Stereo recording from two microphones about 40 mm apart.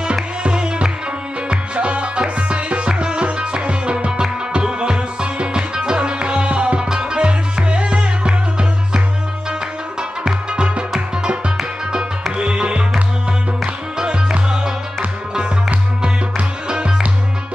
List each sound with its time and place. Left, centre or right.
0.0 s music: right
11.9 s music: right
13.9 s music: right
16.0 s music: right